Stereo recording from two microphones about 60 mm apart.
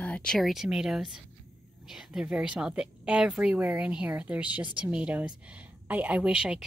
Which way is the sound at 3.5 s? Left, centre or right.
Right.